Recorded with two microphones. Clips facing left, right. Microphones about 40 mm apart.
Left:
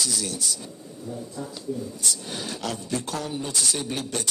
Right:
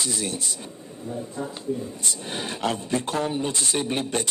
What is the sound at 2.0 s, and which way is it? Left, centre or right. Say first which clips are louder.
A man's voice: right 1 dB; right.